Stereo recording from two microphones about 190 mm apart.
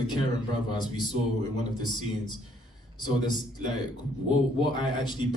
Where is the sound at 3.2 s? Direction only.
20° left (ahead or behind).